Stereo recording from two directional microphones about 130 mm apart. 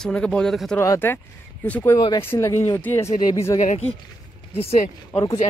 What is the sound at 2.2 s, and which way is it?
Speech, 20° left (ahead or behind).